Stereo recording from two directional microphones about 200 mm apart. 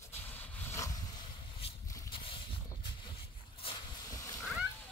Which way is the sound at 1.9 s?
20° left (ahead or behind).